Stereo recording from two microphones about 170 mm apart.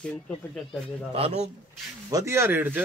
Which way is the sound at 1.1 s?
35° right (ahead or behind).